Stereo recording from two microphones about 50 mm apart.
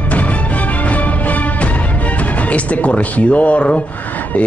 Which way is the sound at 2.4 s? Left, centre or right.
Left.